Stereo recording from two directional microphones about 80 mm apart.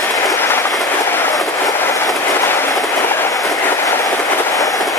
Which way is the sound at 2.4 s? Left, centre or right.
Left.